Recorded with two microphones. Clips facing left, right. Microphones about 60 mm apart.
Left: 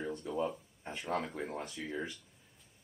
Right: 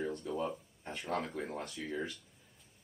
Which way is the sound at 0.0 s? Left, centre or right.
Centre.